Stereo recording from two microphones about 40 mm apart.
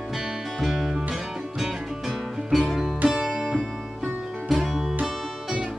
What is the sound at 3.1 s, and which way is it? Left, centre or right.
Music, centre.